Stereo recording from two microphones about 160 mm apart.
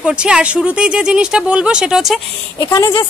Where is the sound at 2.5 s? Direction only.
25° left (ahead or behind).